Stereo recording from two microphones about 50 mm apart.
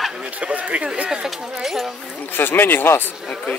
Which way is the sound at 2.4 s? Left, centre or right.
Left.